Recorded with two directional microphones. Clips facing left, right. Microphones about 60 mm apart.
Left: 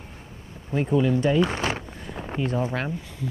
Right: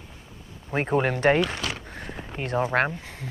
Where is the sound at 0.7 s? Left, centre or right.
Right.